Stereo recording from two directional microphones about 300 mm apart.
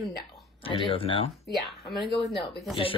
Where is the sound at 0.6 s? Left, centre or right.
Centre.